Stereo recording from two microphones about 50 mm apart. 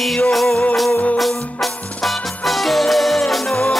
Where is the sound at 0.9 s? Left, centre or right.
Left.